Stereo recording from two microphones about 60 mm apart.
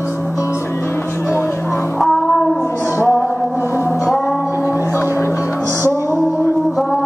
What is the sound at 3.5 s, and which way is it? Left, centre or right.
Music, left.